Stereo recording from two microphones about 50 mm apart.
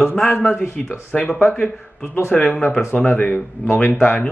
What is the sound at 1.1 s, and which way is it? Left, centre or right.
Speech, centre.